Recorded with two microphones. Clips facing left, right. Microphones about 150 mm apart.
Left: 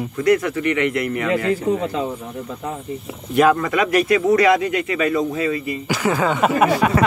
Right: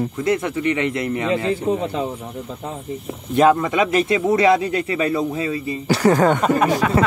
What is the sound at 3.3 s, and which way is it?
Speech, 25° right (ahead or behind).